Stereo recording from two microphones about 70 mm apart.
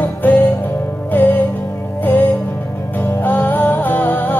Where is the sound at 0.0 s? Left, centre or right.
Left.